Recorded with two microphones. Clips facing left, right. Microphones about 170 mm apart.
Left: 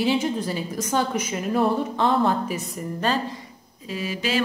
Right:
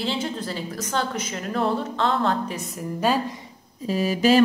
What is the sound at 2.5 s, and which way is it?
Speech, centre (ahead or behind).